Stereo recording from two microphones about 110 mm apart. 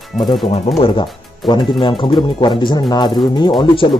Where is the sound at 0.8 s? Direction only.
45° left (ahead or behind).